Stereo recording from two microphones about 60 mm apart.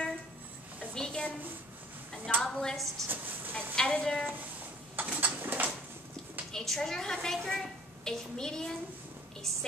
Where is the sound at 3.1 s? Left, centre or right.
Right.